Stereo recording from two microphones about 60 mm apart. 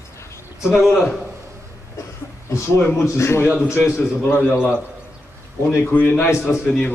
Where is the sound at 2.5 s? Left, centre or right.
Left.